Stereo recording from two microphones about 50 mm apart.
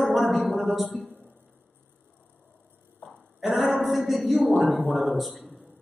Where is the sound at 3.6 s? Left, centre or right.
Centre.